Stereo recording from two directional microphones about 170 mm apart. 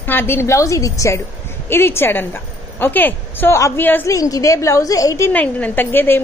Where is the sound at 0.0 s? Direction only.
10° left (ahead or behind).